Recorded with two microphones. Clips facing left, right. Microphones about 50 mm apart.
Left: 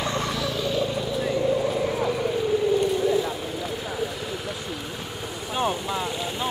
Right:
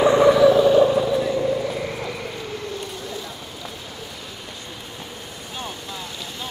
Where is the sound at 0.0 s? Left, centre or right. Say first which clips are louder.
Right 13 dB; centre.